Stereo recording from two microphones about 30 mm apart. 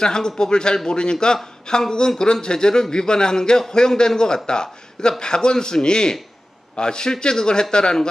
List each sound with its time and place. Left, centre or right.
0.0 s a man's voice: left